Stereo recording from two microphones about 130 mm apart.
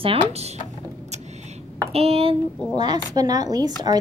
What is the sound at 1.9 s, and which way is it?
Speech, 50° right (ahead or behind).